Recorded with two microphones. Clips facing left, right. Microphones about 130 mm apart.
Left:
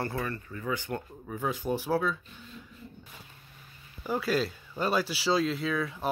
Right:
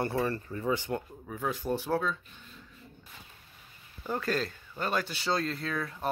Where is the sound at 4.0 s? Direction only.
10° left (ahead or behind).